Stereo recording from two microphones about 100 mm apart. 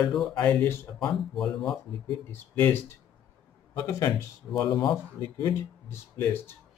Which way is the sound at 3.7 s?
35° left (ahead or behind).